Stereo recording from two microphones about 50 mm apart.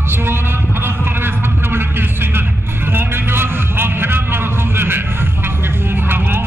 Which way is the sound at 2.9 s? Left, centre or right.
Right.